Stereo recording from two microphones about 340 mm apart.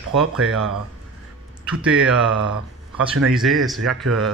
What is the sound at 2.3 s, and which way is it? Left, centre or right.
Speech, right.